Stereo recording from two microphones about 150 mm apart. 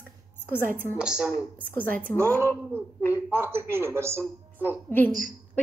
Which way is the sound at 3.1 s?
15° right (ahead or behind).